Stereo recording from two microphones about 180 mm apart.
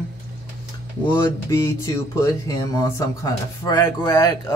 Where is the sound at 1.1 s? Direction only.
15° left (ahead or behind).